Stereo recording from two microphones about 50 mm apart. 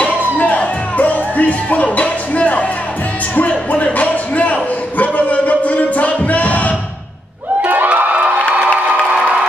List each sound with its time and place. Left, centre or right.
0.4 s music: left
7.6 s crowd: right